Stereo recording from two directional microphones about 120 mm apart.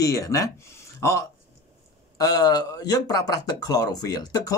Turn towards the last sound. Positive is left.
turn(degrees=30)  # may be behind; listen again after turning